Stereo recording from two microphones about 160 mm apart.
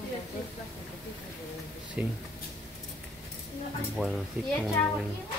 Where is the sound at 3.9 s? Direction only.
Centre (ahead or behind).